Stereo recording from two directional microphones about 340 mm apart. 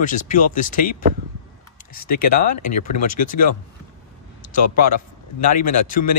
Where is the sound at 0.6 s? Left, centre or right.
Left.